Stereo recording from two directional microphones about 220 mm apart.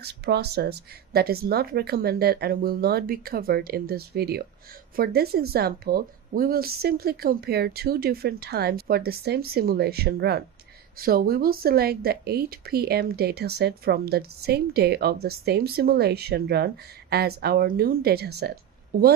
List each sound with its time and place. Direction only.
0.0 s speech: 50° right (ahead or behind)